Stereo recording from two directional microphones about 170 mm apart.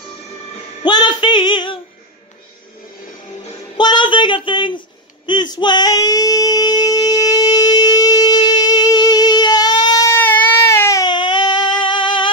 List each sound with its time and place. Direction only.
0.8 s music: 25° left (ahead or behind)
3.7 s a sound: 25° left (ahead or behind)
11.8 s music: 30° left (ahead or behind)